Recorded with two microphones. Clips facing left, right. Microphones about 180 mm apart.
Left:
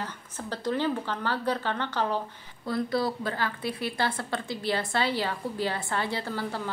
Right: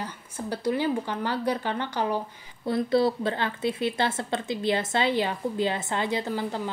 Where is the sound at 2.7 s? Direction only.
25° right (ahead or behind).